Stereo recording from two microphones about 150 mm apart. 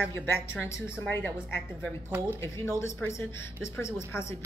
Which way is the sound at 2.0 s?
15° right (ahead or behind).